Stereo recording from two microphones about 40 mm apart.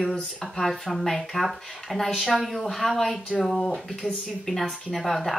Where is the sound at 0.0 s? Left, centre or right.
Centre.